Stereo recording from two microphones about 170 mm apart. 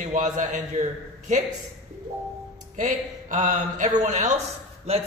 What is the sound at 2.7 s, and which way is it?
Speech, 45° right (ahead or behind).